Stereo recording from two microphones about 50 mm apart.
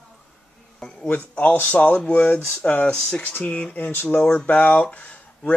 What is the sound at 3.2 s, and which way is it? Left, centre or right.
Speech, left.